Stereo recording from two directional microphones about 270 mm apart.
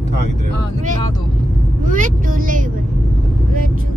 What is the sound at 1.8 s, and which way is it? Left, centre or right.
Speech, right.